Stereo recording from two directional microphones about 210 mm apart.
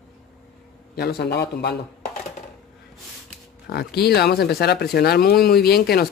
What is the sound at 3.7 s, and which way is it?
Speech, 50° left (ahead or behind).